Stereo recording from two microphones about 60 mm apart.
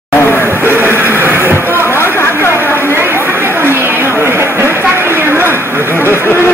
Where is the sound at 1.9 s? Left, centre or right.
Left.